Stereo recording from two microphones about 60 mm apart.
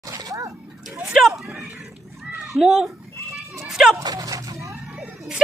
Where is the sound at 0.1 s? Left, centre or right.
Right.